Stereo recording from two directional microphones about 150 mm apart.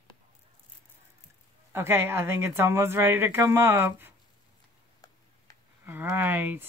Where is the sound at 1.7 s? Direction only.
15° right (ahead or behind).